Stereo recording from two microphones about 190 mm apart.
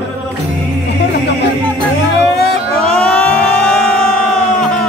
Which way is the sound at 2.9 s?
5° left (ahead or behind).